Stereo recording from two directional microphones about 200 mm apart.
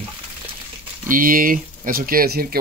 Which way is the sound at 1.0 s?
45° right (ahead or behind).